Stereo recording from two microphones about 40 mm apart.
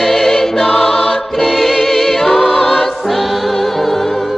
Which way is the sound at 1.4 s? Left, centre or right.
Centre.